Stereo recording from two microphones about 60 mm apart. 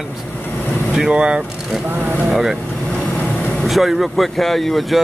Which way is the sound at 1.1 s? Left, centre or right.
Centre.